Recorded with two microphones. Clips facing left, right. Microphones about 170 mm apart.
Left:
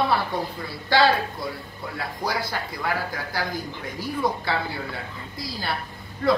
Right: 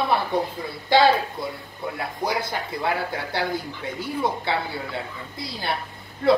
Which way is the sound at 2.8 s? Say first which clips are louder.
Right 2 dB; 25° right (ahead or behind).